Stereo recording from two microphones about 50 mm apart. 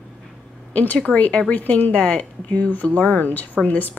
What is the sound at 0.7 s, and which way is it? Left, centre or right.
Speech, left.